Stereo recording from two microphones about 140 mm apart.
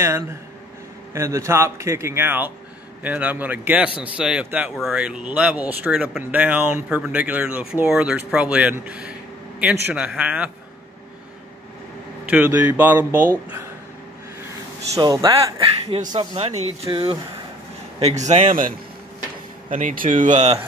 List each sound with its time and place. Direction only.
1.1 s a man's voice: 20° right (ahead or behind)
12.3 s speech: 15° right (ahead or behind)
15.0 s a man's voice: 30° right (ahead or behind)
16.2 s speech: 45° right (ahead or behind)
17.9 s a man's voice: 50° right (ahead or behind)
19.7 s speech: 75° right (ahead or behind); by 20.5 s 60° right (ahead or behind)